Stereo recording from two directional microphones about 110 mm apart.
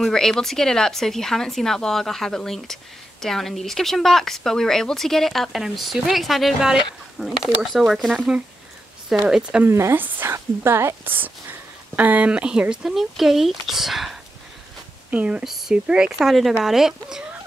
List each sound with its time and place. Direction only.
0.0 s speech: 5° left (ahead or behind)
9.7 s a woman's voice: 25° right (ahead or behind); by 17.2 s 5° right (ahead or behind)